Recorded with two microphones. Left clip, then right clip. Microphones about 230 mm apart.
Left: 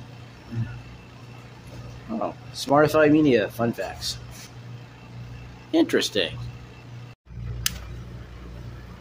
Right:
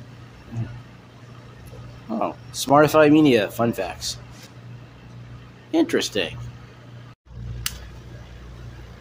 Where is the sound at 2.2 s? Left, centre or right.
Centre.